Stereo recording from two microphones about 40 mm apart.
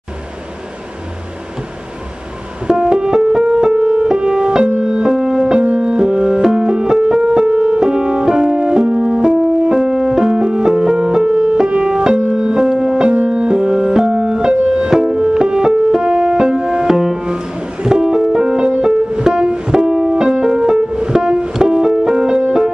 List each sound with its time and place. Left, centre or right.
2.6 s music: centre